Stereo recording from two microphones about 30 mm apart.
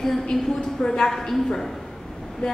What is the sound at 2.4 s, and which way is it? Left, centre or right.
Vehicle, left.